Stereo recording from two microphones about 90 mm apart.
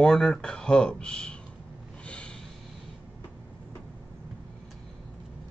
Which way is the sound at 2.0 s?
10° left (ahead or behind).